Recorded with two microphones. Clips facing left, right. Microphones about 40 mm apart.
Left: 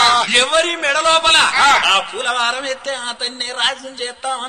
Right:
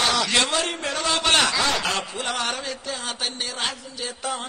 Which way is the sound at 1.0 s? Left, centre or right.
Left.